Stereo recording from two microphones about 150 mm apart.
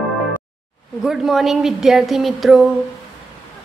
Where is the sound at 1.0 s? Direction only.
Centre (ahead or behind).